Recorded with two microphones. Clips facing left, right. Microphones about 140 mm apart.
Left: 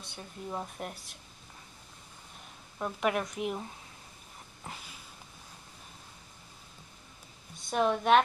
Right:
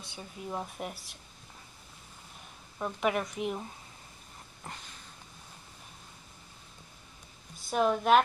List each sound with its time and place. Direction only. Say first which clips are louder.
0.0 s speech: even; 5° right (ahead or behind)
2.8 s speech: even; centre (ahead or behind)
4.6 s a sound: even; 5° left (ahead or behind)
7.5 s a woman's voice: right 1 dB; centre (ahead or behind)